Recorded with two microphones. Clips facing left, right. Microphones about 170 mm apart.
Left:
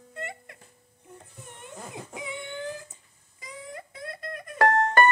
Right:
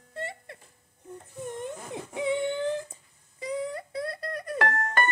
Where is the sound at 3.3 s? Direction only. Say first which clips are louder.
Right 10 dB; 35° right (ahead or behind).